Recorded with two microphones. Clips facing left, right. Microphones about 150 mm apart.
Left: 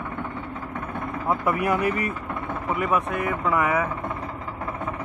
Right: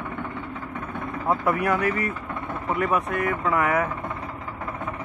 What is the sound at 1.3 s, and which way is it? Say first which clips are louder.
Speech: right 1 dB; 10° right (ahead or behind).